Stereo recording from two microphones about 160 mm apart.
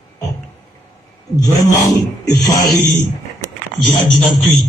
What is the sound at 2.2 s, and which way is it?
Speech, 20° left (ahead or behind).